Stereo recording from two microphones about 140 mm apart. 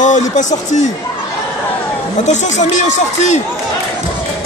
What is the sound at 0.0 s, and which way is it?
Speech, 60° left (ahead or behind).